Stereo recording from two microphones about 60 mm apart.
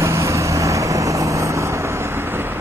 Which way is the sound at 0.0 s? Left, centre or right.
Right.